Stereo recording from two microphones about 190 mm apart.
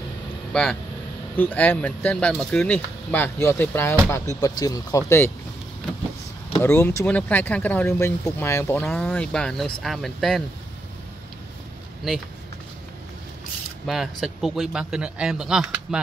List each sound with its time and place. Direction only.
0.5 s speech: 5° left (ahead or behind)
6.6 s speech: 15° left (ahead or behind)
13.8 s speech: centre (ahead or behind)